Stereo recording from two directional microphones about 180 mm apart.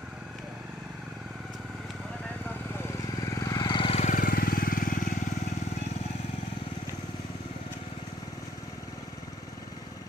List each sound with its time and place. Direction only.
3.3 s vehicle: 20° left (ahead or behind)
4.0 s vehicle: 50° left (ahead or behind)